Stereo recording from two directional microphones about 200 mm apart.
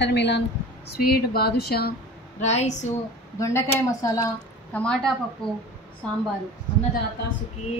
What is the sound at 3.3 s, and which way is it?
Speech, 15° left (ahead or behind).